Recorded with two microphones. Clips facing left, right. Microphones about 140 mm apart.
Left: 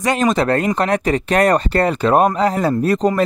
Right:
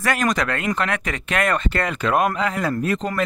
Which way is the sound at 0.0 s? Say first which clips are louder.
Left 5 dB; 25° left (ahead or behind).